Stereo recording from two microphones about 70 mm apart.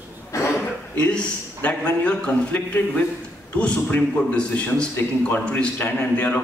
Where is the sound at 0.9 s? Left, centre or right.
Centre.